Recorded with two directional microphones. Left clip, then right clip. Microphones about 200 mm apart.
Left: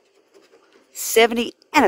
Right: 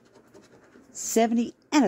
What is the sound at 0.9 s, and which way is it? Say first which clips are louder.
Speech: left 8 dB; 45° left (ahead or behind).